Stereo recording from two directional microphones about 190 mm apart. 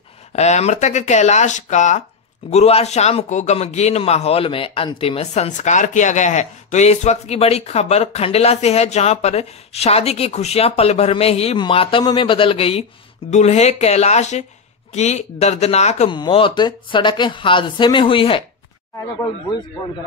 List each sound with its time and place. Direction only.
0.4 s a man's voice: 35° left (ahead or behind)